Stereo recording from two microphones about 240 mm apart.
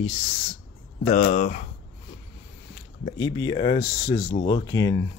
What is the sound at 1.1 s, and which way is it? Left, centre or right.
Speech, left.